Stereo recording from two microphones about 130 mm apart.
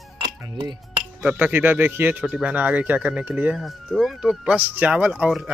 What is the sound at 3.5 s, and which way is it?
Speech, centre (ahead or behind).